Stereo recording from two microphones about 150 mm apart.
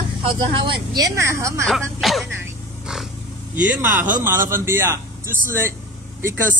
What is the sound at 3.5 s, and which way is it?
Speech, 15° right (ahead or behind).